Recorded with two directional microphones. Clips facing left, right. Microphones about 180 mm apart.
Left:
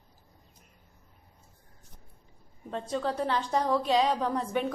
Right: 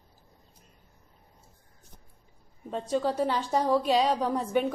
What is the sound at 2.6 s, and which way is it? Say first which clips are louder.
A woman's voice: right 3 dB; 10° right (ahead or behind).